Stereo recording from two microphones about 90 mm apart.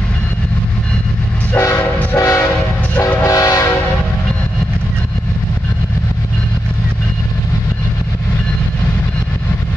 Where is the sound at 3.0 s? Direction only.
40° left (ahead or behind).